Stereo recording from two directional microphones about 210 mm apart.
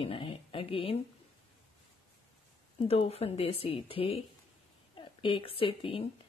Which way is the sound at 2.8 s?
30° left (ahead or behind).